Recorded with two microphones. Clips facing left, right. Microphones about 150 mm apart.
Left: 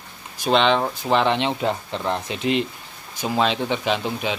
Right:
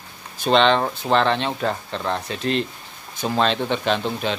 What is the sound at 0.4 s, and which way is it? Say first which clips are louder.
Speech: right 1 dB; 5° left (ahead or behind).